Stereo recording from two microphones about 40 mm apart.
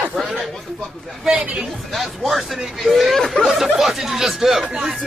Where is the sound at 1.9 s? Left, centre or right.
Centre.